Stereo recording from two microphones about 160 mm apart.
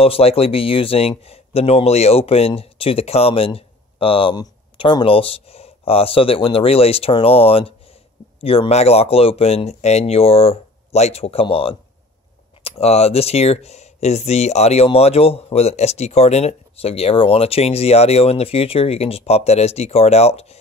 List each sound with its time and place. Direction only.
0.0 s speech: 40° left (ahead or behind)